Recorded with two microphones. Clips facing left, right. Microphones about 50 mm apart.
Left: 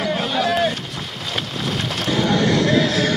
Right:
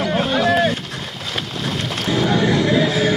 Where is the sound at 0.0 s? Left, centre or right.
Centre.